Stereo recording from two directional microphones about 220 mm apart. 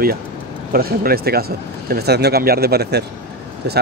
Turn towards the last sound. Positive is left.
turn(degrees=-50)  # may be behind; listen again after turning